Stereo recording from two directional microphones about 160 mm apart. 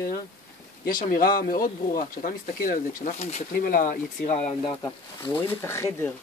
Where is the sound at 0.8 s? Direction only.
60° left (ahead or behind).